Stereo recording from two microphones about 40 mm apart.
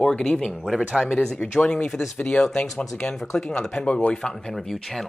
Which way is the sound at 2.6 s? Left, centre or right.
Centre.